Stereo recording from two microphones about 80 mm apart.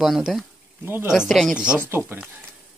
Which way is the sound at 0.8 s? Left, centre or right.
Right.